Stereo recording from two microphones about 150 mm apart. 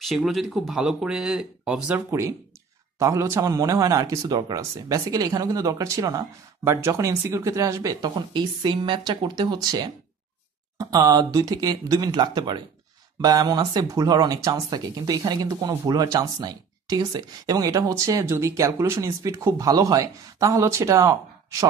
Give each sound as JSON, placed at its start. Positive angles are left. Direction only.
{"t": 0.0, "sound": "speech", "side_deg": 0}
{"t": 2.0, "sound": "speech", "side_deg": -20}